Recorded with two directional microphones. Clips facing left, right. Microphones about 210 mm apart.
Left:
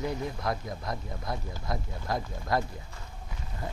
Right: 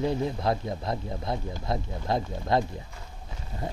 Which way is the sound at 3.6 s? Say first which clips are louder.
Right 4 dB; 25° right (ahead or behind).